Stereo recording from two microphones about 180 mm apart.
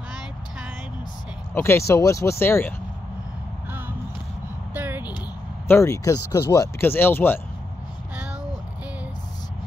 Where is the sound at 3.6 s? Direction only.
10° right (ahead or behind).